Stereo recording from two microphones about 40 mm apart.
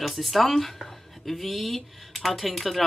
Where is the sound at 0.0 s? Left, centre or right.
Centre.